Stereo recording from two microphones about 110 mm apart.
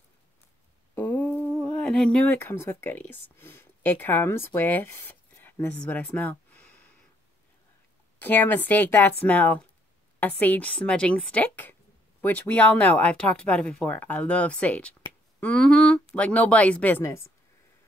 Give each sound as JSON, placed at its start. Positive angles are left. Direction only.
{"t": 0.9, "sound": "a sound", "side_deg": 20}
{"t": 1.5, "sound": "speech", "side_deg": 10}
{"t": 8.2, "sound": "speech", "side_deg": 15}